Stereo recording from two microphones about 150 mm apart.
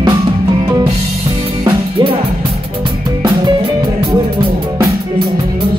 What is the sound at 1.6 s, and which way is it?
Music, 35° right (ahead or behind).